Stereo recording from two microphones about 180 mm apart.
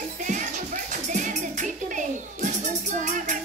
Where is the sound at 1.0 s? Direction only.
45° right (ahead or behind).